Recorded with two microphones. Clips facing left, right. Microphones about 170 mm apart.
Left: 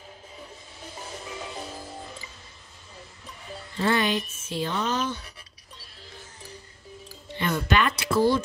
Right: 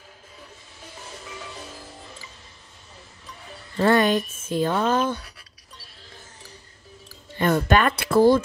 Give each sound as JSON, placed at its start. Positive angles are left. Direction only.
{"t": 3.7, "sound": "speech", "side_deg": -50}
{"t": 7.3, "sound": "speech", "side_deg": -50}